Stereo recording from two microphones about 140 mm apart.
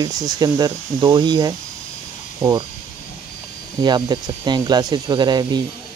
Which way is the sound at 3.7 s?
30° right (ahead or behind).